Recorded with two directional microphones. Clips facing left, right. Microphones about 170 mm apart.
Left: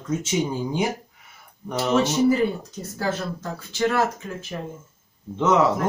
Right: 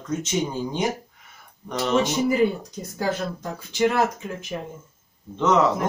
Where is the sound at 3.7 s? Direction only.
15° right (ahead or behind).